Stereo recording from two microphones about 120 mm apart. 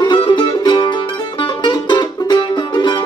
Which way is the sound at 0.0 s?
40° left (ahead or behind).